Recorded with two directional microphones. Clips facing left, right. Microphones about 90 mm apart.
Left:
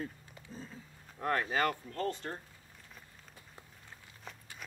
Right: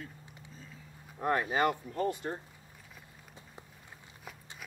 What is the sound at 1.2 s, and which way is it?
Speech, 15° right (ahead or behind).